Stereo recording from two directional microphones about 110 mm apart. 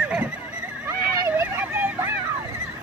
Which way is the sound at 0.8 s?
20° right (ahead or behind).